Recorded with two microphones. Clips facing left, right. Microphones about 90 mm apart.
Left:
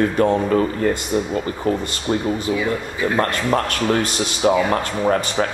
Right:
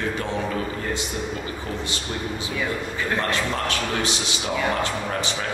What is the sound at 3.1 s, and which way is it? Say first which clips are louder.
Speech: left 7 dB; 50° left (ahead or behind).